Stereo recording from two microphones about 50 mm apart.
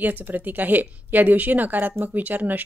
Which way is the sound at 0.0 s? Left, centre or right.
Right.